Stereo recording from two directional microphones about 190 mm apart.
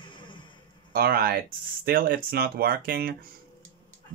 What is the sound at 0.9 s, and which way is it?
Speech, 55° right (ahead or behind).